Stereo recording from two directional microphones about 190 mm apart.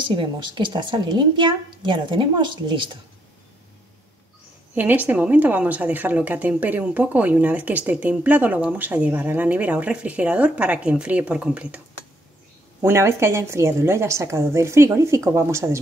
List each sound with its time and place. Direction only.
0.1 s a woman's voice: 25° right (ahead or behind)
4.7 s a woman's voice: 10° right (ahead or behind)
12.8 s a woman's voice: 15° right (ahead or behind)